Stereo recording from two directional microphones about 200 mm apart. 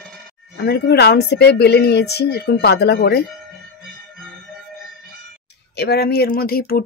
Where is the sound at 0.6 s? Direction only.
55° left (ahead or behind).